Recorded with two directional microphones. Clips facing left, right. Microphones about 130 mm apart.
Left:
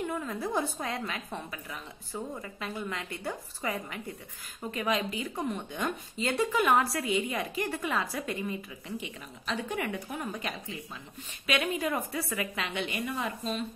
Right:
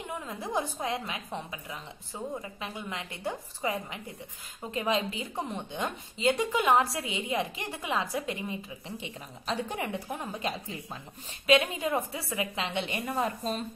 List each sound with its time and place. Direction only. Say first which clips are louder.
0.0 s a woman's voice: left 4 dB; 20° right (ahead or behind); by 13.7 s 40° right (ahead or behind)